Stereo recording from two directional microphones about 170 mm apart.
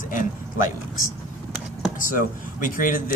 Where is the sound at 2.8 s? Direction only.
55° left (ahead or behind).